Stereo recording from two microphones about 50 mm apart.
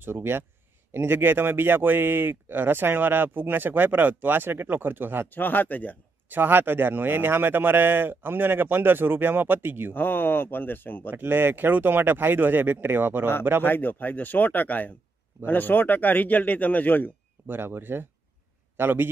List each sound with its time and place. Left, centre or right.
0.0 s speech: right
5.3 s speech: left
6.2 s speech: right
9.9 s speech: left
11.1 s speech: right
13.7 s speech: left
17.5 s speech: right